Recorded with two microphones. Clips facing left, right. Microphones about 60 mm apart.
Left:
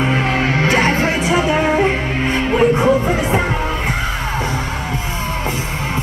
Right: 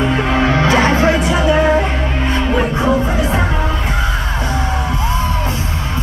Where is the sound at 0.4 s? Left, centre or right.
Left.